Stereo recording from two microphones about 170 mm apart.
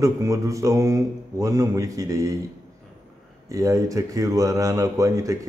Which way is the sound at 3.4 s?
20° right (ahead or behind).